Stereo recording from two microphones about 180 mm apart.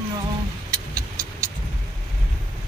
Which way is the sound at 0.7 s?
20° right (ahead or behind).